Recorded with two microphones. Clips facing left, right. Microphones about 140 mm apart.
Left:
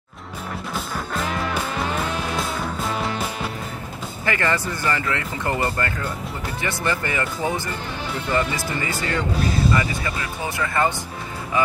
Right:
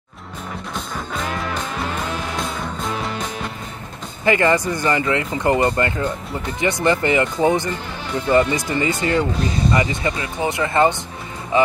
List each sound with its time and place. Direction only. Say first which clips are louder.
0.7 s music: even; 5° left (ahead or behind)
4.2 s speech: right 7 dB; 20° right (ahead or behind)